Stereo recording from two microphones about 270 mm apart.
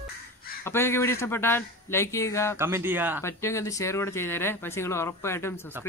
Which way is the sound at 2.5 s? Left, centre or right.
Centre.